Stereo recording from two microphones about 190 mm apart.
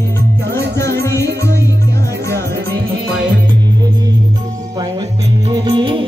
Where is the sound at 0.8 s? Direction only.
15° left (ahead or behind).